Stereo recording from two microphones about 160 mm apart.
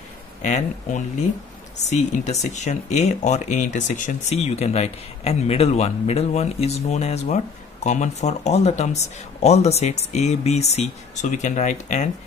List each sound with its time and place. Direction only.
0.4 s speech: 50° left (ahead or behind)